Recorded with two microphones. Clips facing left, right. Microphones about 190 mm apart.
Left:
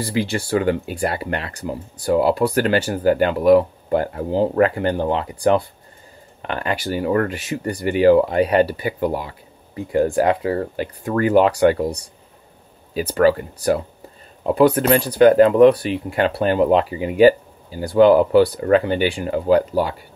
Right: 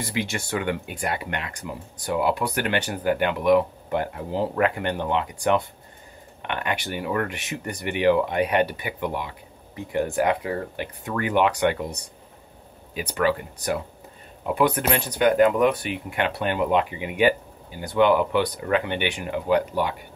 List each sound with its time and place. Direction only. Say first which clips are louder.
0.0 s speech: left 6 dB; 35° left (ahead or behind)
12.9 s speech: left 7 dB; 40° left (ahead or behind)
14.5 s speech: left 7 dB; 35° left (ahead or behind)